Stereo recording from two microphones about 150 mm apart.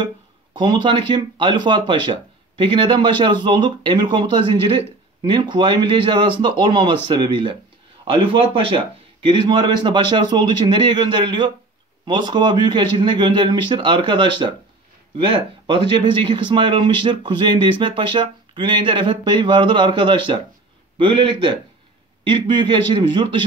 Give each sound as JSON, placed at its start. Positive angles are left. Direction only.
{"t": 0.0, "sound": "speech", "side_deg": -30}